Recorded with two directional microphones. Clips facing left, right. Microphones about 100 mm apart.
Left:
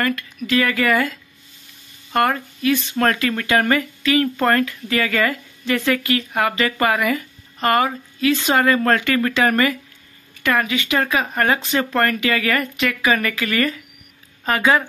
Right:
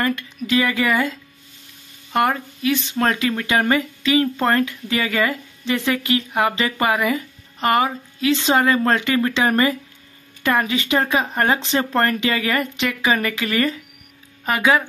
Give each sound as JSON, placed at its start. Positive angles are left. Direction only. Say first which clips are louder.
{"t": 0.5, "sound": "speech", "louder": "left 1 dB", "side_deg": -20}
{"t": 2.1, "sound": "speech", "louder": "even", "side_deg": -15}
{"t": 14.4, "sound": "speech", "louder": "even", "side_deg": -10}